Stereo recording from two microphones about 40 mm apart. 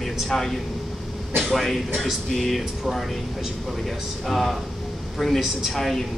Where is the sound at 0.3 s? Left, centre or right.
Centre.